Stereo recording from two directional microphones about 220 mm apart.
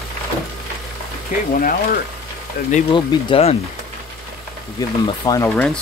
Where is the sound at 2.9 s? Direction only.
25° left (ahead or behind).